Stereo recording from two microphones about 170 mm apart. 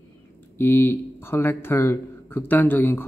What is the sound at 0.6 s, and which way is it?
Speech, 15° left (ahead or behind).